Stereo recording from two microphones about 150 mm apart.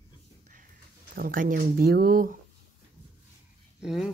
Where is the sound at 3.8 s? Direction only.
5° right (ahead or behind).